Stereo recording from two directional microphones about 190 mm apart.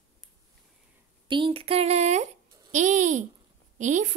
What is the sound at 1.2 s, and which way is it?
A woman's voice, 25° right (ahead or behind).